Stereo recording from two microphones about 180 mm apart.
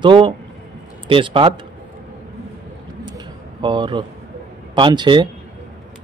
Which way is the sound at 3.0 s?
25° right (ahead or behind).